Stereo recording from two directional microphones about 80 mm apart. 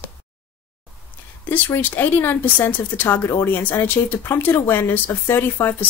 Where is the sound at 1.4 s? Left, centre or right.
Left.